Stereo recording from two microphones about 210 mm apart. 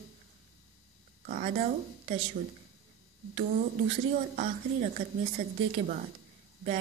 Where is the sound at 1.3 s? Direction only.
35° right (ahead or behind).